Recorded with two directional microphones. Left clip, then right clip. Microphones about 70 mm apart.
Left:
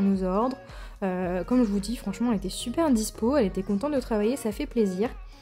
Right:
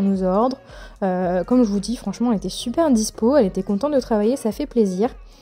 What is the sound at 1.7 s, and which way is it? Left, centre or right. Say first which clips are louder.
A woman's voice: right 6 dB; right.